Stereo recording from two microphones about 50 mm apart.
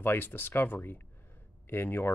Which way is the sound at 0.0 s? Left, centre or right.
Left.